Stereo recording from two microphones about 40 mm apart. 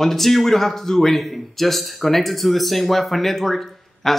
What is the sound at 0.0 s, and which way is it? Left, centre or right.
Speech, centre.